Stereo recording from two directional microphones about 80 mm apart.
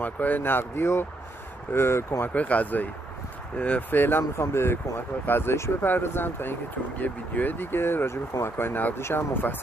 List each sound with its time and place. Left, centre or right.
0.0 s speech: left
2.3 s speech: centre
4.2 s speech: left